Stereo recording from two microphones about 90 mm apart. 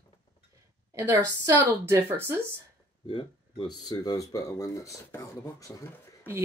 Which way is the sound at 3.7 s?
50° left (ahead or behind).